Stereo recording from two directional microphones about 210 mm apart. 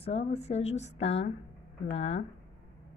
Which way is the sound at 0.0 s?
30° left (ahead or behind).